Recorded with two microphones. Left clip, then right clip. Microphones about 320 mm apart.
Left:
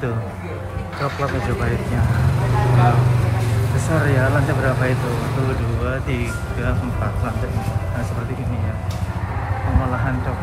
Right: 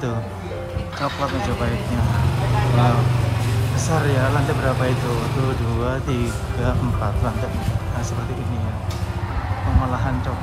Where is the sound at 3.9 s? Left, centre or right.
Centre.